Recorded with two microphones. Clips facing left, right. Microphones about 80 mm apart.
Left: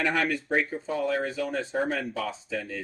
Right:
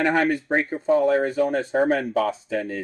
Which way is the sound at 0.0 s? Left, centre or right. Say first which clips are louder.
Right 6 dB; right.